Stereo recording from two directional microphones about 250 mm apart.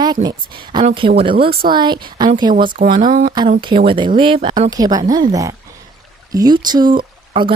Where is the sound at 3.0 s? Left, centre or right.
Right.